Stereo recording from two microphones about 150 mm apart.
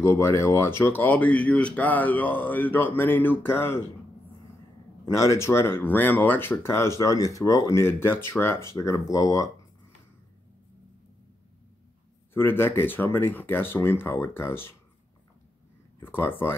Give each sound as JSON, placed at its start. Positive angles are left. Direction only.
{"t": 0.0, "sound": "speech", "side_deg": 20}
{"t": 5.0, "sound": "speech", "side_deg": 20}
{"t": 12.4, "sound": "speech", "side_deg": 15}
{"t": 16.0, "sound": "speech", "side_deg": 15}